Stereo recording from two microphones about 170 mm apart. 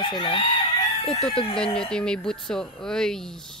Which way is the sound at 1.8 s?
5° left (ahead or behind).